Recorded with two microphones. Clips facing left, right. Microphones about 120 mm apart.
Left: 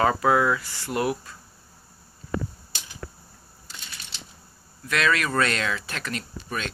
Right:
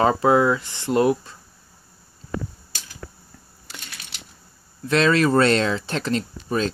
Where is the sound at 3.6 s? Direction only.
65° right (ahead or behind).